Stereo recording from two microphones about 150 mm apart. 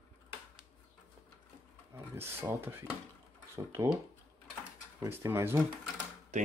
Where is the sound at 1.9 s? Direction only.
15° right (ahead or behind).